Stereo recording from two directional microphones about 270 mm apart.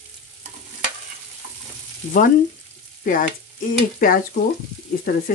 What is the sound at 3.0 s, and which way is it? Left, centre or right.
Stir, left.